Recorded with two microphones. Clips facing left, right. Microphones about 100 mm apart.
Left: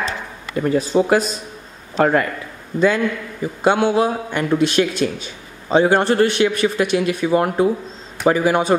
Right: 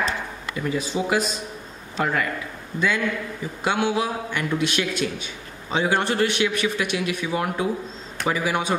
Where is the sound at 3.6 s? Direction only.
40° left (ahead or behind).